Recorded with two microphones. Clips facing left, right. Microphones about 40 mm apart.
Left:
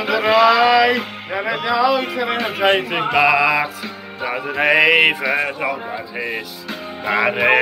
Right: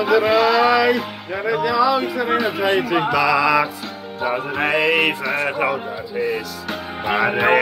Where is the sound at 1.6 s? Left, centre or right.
Left.